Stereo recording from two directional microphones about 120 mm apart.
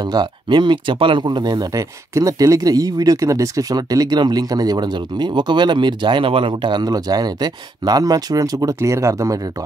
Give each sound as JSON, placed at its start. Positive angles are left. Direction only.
{"t": 0.0, "sound": "speech", "side_deg": -35}